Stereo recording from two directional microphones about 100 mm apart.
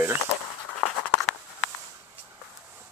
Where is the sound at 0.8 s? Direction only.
10° left (ahead or behind).